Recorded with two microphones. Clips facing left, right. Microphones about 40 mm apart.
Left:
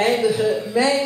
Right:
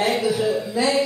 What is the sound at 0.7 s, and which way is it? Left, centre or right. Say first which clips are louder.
Music: left 3 dB; left.